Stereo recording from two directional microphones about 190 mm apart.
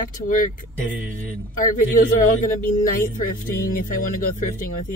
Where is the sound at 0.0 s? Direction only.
45° left (ahead or behind).